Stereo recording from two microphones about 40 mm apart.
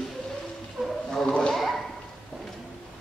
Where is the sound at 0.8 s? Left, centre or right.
Right.